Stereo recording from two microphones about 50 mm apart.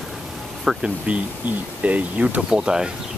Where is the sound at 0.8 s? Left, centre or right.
Right.